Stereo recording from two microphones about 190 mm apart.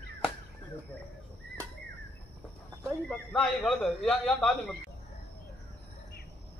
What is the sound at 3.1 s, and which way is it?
A man's voice, 5° left (ahead or behind).